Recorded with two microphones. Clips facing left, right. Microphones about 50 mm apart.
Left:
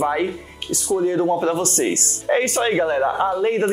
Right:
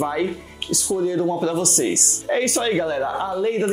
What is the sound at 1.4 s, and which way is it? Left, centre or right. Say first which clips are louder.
Speech: left 1 dB; left.